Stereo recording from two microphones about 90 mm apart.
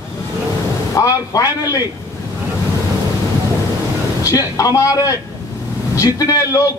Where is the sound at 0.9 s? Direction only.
40° left (ahead or behind).